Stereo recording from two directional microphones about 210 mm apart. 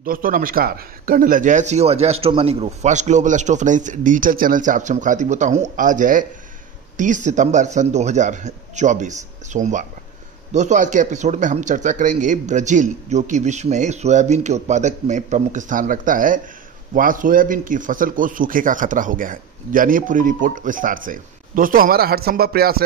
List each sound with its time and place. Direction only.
0.0 s speech: 40° right (ahead or behind)